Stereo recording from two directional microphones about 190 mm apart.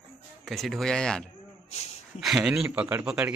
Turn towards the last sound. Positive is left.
turn(degrees=-5)  # may be behind; listen again after turning